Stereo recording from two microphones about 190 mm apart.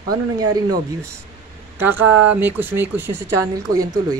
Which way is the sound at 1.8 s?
10° right (ahead or behind).